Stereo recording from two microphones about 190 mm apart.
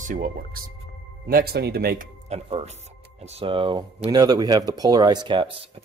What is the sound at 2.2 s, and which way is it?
Speech, 35° right (ahead or behind).